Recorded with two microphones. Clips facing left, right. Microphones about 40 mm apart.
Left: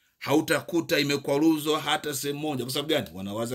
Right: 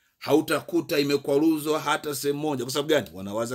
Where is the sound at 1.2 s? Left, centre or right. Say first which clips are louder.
Left 1 dB; left.